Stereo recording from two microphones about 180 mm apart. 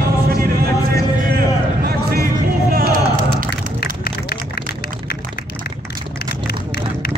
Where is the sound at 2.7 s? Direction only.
55° right (ahead or behind).